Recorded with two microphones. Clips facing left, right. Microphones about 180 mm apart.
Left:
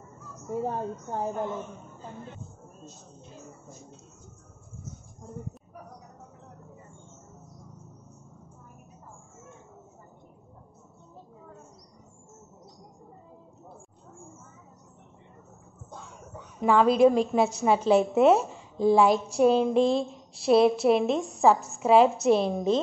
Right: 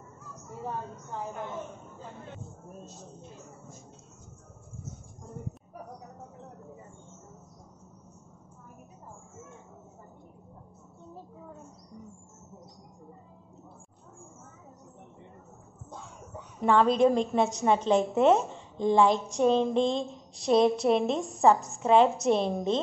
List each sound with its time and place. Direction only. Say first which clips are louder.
1.1 s a woman's voice: left 6 dB; 35° left (ahead or behind)
16.5 s a woman's voice: left 2 dB; 5° left (ahead or behind)
19.1 s a woman's voice: left 4 dB; 15° right (ahead or behind)
19.6 s a woman's voice: left 3 dB; 5° left (ahead or behind)